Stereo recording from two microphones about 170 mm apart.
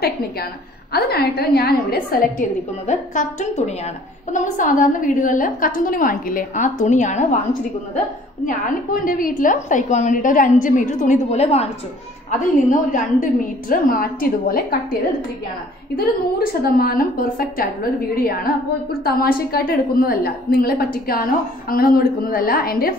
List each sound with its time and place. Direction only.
0.9 s a woman's voice: 65° left (ahead or behind)
2.9 s a woman's voice: 45° left (ahead or behind)
8.5 s a woman's voice: 55° left (ahead or behind); by 11.7 s 35° left (ahead or behind)
12.3 s a woman's voice: 50° left (ahead or behind)
16.6 s a woman's voice: 60° left (ahead or behind)